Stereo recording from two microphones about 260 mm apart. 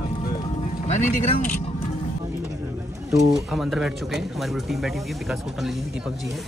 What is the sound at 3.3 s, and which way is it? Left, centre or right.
A man's voice, centre.